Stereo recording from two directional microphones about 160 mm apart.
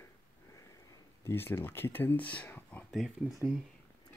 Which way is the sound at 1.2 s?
15° left (ahead or behind).